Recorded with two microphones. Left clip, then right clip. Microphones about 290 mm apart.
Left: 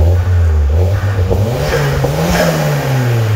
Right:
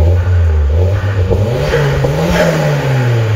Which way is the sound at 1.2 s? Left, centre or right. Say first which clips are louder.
Right 2 dB; left.